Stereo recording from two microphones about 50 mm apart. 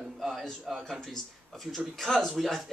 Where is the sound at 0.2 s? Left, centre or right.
Centre.